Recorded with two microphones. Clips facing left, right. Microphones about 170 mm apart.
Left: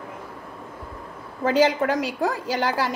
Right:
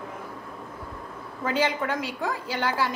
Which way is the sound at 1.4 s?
40° left (ahead or behind).